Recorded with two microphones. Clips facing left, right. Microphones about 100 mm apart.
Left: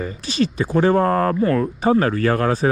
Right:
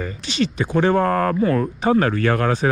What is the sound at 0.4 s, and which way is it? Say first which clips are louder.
Speech: left 1 dB; 40° left (ahead or behind).